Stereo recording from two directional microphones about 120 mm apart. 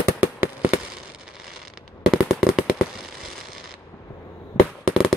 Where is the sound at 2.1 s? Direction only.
Centre (ahead or behind).